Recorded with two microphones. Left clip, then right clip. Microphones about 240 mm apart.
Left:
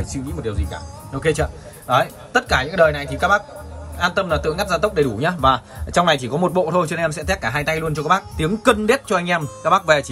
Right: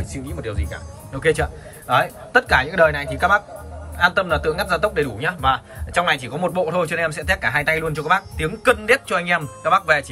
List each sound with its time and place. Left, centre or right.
0.7 s a man's voice: centre
5.2 s a man's voice: centre